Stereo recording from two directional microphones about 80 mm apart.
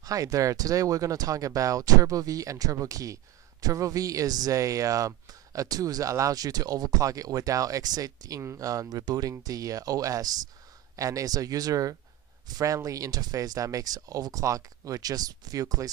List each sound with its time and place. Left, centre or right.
0.0 s speech: right